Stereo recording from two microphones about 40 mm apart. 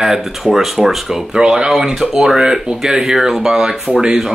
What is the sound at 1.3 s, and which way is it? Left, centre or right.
Speech, centre.